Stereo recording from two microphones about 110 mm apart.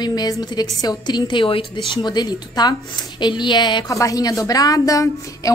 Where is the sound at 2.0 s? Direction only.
40° left (ahead or behind).